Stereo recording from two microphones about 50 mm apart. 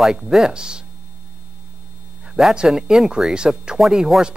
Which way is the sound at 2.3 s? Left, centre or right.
Centre.